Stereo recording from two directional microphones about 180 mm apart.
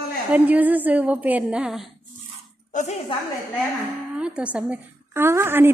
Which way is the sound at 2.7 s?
45° left (ahead or behind).